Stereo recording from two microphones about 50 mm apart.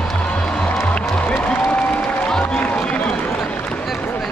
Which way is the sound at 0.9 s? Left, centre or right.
Left.